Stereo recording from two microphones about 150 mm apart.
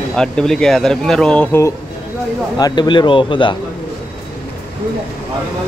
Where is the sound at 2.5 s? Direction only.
30° left (ahead or behind).